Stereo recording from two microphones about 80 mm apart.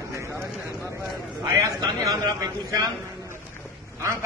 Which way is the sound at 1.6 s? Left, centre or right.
Right.